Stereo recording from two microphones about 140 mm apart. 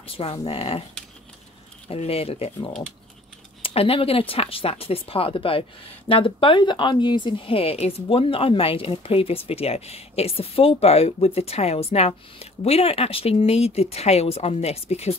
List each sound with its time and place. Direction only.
0.0 s speech: 45° left (ahead or behind)
1.9 s speech: 45° left (ahead or behind)